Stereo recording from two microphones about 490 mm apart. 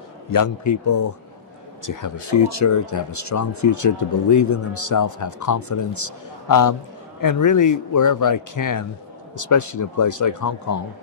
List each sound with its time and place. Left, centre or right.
0.3 s speech: left